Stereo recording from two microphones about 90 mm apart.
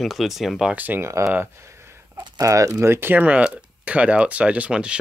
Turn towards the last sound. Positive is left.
turn(degrees=-10)  # may be behind; listen again after turning